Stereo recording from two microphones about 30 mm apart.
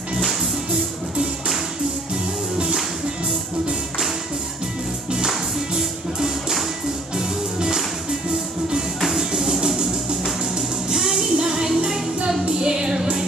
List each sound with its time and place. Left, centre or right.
7.2 s music: centre
9.3 s music: centre
11.0 s music: centre